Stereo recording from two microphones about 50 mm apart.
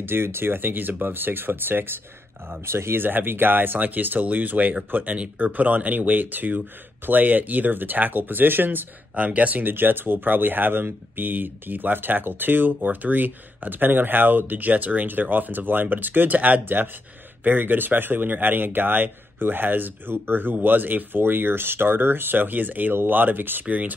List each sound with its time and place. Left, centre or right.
0.0 s speech: right
2.6 s speech: right
9.1 s speech: right